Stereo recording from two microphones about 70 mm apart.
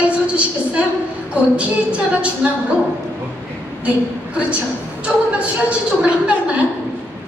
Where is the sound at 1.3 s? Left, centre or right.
Centre.